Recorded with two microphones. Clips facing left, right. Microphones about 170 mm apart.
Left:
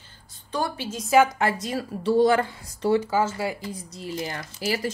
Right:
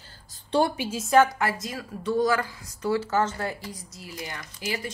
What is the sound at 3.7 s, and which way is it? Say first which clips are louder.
A woman's voice: left 7 dB; 30° left (ahead or behind).